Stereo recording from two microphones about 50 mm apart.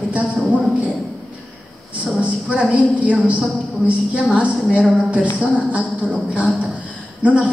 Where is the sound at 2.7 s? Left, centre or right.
Right.